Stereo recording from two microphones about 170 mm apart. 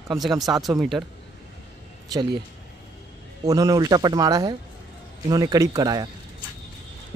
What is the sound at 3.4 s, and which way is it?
Speech, 20° right (ahead or behind).